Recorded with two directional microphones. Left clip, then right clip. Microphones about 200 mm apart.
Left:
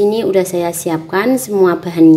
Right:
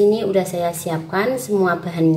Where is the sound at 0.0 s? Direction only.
40° left (ahead or behind).